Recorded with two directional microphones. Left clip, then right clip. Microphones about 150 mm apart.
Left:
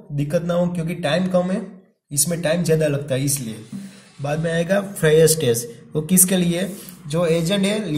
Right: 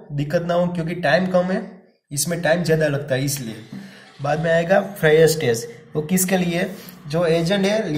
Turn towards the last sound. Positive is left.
turn(degrees=30)  # may be behind; listen again after turning